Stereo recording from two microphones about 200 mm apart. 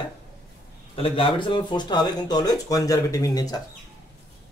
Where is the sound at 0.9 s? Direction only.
30° left (ahead or behind).